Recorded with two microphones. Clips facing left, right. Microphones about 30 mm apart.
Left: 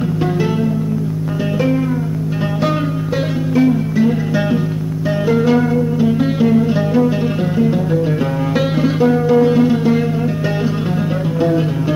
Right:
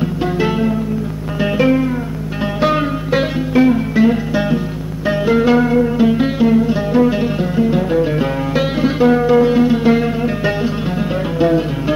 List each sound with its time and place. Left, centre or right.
0.4 s music: right
3.1 s music: right
4.3 s music: centre
5.2 s music: right
5.8 s music: right
6.3 s music: centre
7.0 s music: right
7.3 s music: centre
7.7 s music: right
8.5 s music: centre
9.0 s music: right